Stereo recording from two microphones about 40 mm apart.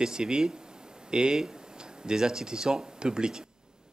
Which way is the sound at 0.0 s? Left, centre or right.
Centre.